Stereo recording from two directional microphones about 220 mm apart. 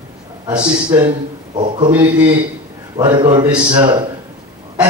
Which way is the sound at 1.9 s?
5° right (ahead or behind).